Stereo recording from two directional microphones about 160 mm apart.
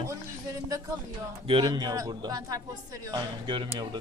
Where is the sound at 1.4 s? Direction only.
30° right (ahead or behind).